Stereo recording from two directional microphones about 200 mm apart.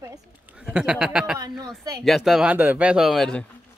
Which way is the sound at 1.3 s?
20° right (ahead or behind).